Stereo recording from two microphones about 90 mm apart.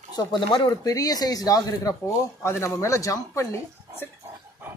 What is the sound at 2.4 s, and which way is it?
Speech, 30° left (ahead or behind).